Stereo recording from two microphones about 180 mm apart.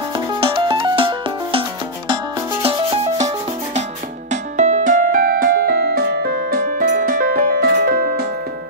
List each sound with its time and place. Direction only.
0.1 s music: 30° right (ahead or behind)
2.6 s rub: 30° right (ahead or behind)
4.3 s music: 40° right (ahead or behind); by 8.3 s 55° right (ahead or behind)